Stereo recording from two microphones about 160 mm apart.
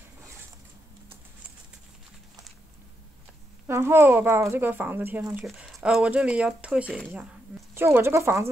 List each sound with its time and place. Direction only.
3.6 s speech: 15° right (ahead or behind)
7.7 s speech: 15° right (ahead or behind)